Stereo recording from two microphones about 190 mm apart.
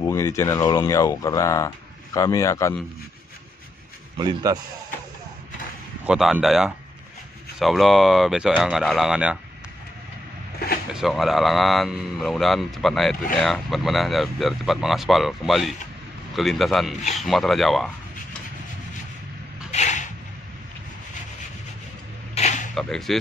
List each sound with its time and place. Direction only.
0.0 s speech: 15° left (ahead or behind)
4.2 s a man's voice: 20° right (ahead or behind)
6.0 s speech: 5° right (ahead or behind)
10.9 s speech: centre (ahead or behind)
19.7 s a sound: 35° left (ahead or behind)
22.3 s a sound: 35° left (ahead or behind)
22.8 s speech: centre (ahead or behind)